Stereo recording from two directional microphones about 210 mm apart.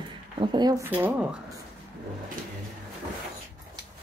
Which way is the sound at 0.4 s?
20° right (ahead or behind).